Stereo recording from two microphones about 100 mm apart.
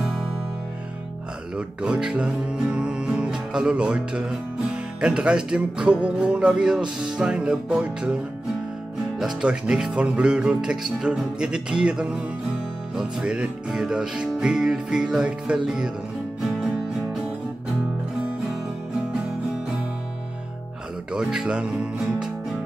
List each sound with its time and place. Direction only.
1.8 s music: 10° right (ahead or behind)
9.2 s speech: 10° right (ahead or behind)
21.1 s speech: 5° right (ahead or behind)